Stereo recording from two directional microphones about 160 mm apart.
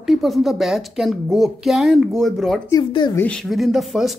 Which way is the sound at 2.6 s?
25° left (ahead or behind).